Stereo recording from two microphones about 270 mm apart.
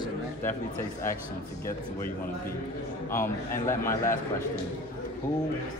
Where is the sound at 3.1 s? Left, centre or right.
Centre.